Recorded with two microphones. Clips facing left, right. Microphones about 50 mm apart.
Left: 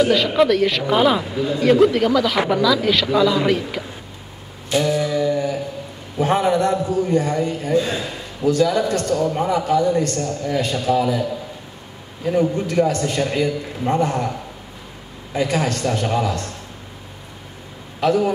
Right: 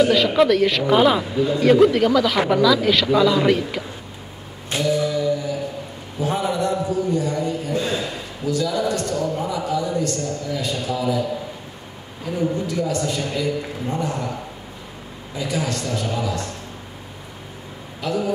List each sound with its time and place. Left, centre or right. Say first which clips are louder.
0.0 s speech: even; centre
4.8 s mantra: right 2 dB; left
6.1 s a sound: left 5 dB; left
8.5 s a man's voice: left 5 dB; left
8.9 s a man's voice: left 4 dB; left
9.3 s a man's voice: left 5 dB; left
12.3 s a man's voice: left 4 dB; left
15.3 s a man's voice: left 4 dB; left
18.0 s a man's voice: left 6 dB; left